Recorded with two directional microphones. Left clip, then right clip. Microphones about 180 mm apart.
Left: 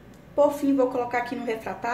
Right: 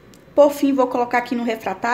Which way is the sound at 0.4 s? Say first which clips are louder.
Right 6 dB; 60° right (ahead or behind).